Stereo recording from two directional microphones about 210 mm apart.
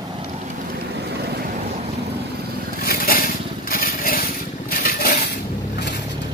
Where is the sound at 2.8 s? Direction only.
45° left (ahead or behind).